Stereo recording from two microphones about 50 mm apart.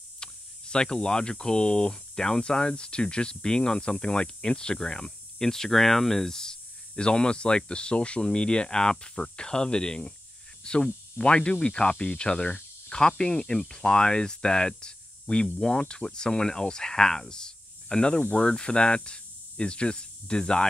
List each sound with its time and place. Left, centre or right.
0.2 s speech: centre
10.6 s a sound: centre
11.1 s speech: left